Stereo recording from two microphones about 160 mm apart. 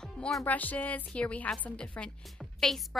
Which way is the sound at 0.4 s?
10° left (ahead or behind).